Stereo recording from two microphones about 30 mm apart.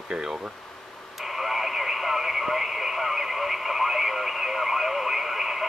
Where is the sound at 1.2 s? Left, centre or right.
Centre.